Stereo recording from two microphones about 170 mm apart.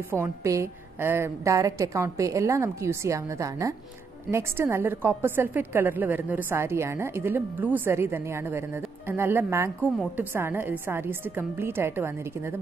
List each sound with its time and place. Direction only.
0.1 s a woman's voice: 15° right (ahead or behind)